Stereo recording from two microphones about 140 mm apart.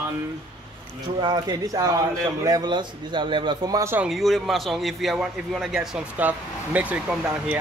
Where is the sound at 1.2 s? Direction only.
30° right (ahead or behind).